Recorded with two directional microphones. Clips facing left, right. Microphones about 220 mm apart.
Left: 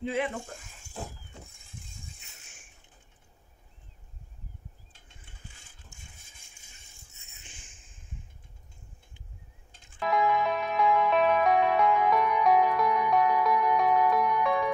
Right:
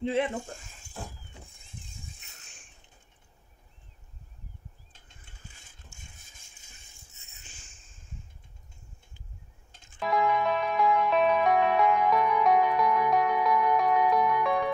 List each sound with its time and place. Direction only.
0.0 s speech: 30° right (ahead or behind)
10.0 s music: centre (ahead or behind)